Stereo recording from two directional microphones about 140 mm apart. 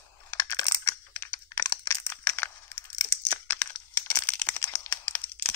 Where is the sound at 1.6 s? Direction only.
20° left (ahead or behind).